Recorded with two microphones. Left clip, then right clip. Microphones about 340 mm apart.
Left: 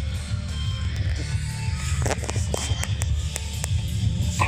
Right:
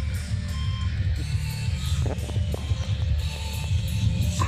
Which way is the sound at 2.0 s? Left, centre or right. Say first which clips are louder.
Left 6 dB; left.